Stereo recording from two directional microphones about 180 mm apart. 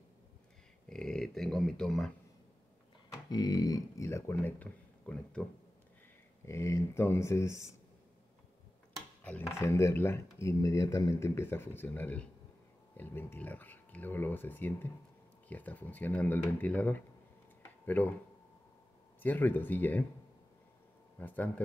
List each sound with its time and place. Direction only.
0.8 s a sound: 5° left (ahead or behind)
3.1 s speech: 20° left (ahead or behind)
6.4 s speech: 15° left (ahead or behind)
9.6 s speech: 15° left (ahead or behind)
19.2 s speech: 10° left (ahead or behind)
21.2 s speech: 10° left (ahead or behind)